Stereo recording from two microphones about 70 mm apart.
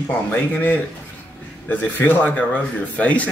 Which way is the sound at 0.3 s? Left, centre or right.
Left.